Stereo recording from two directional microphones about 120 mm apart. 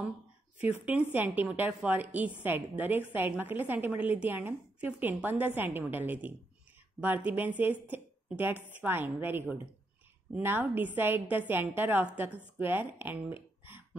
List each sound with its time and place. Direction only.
0.6 s a woman's voice: 15° right (ahead or behind)